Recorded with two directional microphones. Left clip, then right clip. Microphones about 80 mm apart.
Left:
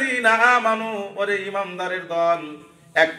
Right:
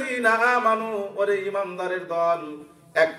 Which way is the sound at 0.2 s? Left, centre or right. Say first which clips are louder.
Left 3 dB; right.